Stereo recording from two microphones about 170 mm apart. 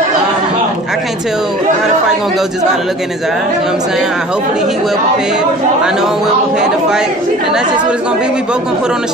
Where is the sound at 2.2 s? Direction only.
Centre (ahead or behind).